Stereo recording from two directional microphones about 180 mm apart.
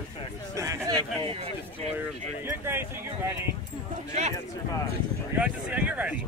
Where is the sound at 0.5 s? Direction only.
15° right (ahead or behind).